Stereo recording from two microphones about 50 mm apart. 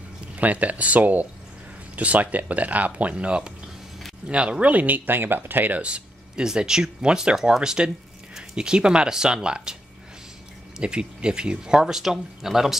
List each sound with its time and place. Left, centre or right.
0.4 s speech: right
5.8 s a sound: right
6.4 s speech: centre
10.8 s speech: right